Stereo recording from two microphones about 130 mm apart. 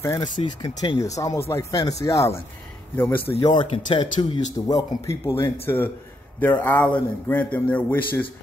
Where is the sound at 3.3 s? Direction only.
40° left (ahead or behind).